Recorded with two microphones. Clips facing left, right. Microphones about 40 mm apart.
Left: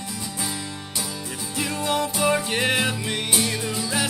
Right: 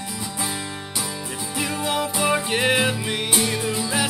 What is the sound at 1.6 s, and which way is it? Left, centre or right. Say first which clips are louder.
Music: even; centre.